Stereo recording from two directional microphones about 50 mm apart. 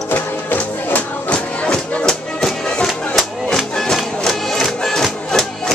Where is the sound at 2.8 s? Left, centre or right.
Centre.